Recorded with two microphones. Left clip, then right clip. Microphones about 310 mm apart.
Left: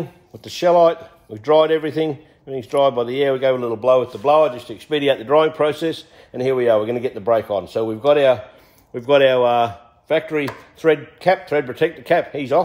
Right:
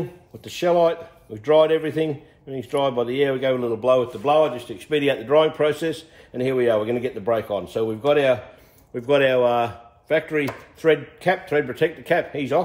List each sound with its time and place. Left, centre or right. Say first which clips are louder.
0.4 s a man's voice: left 5 dB; left